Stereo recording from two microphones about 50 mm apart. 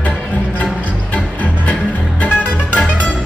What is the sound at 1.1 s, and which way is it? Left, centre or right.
Music, left.